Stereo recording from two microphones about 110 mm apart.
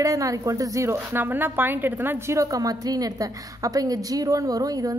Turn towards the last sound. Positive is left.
turn(degrees=-35)  # may be behind; listen again after turning